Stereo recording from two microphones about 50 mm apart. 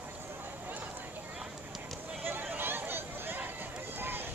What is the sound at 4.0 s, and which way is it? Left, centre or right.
Run, right.